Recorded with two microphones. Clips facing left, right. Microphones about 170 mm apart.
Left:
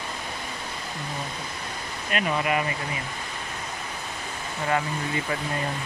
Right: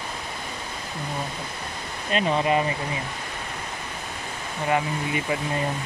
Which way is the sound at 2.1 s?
30° right (ahead or behind).